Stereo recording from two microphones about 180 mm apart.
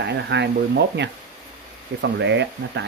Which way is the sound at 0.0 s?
75° right (ahead or behind).